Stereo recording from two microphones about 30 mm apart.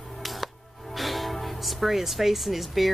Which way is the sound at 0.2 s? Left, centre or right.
Centre.